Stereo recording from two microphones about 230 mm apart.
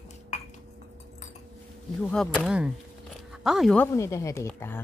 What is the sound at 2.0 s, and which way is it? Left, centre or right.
A woman's voice, centre.